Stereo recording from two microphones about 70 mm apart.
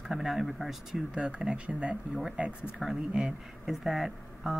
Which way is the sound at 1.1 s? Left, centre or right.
Centre.